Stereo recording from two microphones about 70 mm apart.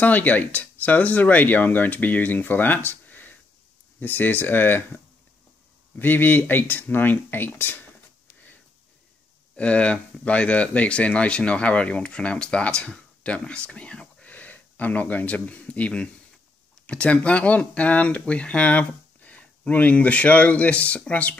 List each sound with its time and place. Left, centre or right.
0.0 s speech: left
9.6 s speech: centre